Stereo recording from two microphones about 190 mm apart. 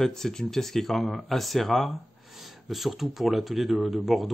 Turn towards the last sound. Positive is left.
turn(degrees=0)  # may be behind; listen again after turning